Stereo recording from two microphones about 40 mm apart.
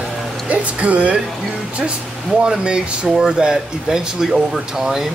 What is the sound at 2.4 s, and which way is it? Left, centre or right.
Speech, right.